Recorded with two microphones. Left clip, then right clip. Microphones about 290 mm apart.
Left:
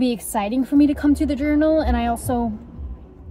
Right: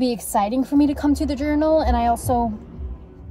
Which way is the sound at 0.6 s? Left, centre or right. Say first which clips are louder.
Left 1 dB; right.